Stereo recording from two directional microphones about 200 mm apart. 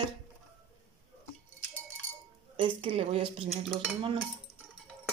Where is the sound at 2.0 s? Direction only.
25° right (ahead or behind).